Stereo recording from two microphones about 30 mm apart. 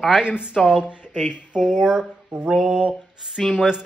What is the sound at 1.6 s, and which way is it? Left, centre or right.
Speech, right.